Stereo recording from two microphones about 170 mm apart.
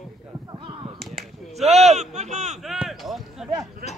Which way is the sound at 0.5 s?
30° right (ahead or behind).